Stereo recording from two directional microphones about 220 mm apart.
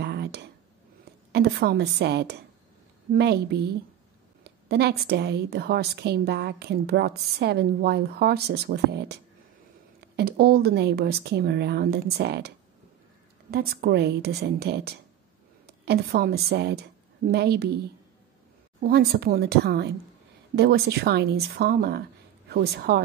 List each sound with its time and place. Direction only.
0.0 s a sound: 50° right (ahead or behind)
1.3 s a woman's voice: 45° right (ahead or behind)
18.8 s a woman's voice: 45° right (ahead or behind)